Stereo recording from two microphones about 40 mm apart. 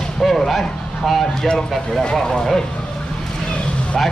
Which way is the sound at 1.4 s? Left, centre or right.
Centre.